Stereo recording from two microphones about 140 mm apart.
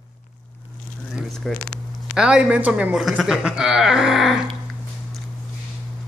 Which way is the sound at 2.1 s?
5° right (ahead or behind).